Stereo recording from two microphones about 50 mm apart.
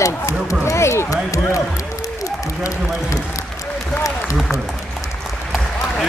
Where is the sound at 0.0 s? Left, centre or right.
Left.